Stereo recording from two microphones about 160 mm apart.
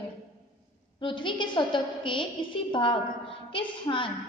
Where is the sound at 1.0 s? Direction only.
30° left (ahead or behind).